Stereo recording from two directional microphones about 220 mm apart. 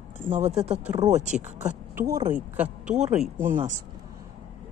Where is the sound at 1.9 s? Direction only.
15° right (ahead or behind).